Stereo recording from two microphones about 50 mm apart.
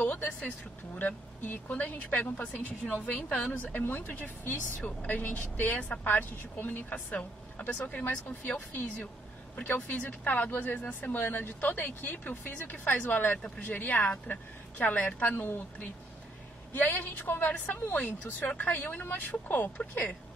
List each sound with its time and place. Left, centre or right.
0.0 s vehicle: left
0.9 s speech: left
2.5 s a woman's voice: left
3.8 s speech: left
7.1 s speech: left
9.6 s speech: left
15.3 s speech: left
16.7 s speech: left